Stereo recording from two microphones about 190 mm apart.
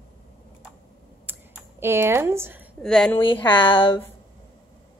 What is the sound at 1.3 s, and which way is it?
Computer keyboard, 10° right (ahead or behind).